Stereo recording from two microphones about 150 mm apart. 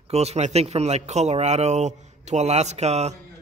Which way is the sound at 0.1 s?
45° right (ahead or behind).